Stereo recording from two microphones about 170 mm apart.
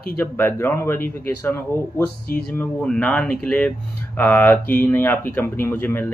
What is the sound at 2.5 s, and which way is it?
Speech, 10° left (ahead or behind).